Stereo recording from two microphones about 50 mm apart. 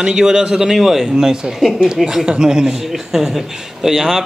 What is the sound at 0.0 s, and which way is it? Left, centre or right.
Speech, centre.